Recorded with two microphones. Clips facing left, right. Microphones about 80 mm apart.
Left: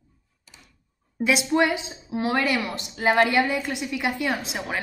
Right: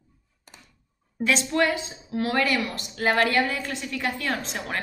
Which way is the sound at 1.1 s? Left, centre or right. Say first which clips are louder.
Left 2 dB; centre.